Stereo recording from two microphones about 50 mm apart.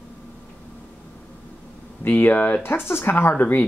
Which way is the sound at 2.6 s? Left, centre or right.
Left.